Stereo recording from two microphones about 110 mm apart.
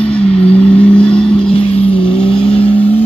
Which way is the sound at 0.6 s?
10° left (ahead or behind).